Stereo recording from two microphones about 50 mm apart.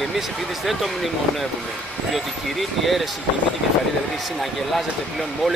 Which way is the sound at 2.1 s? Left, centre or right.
Centre.